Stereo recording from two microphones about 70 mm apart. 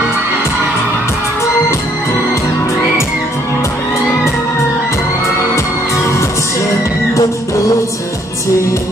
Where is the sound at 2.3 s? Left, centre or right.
Left.